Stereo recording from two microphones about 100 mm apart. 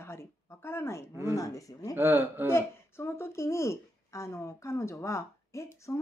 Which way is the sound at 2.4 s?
25° left (ahead or behind).